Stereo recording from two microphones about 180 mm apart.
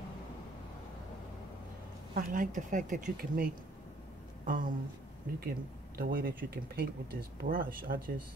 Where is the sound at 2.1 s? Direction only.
50° right (ahead or behind).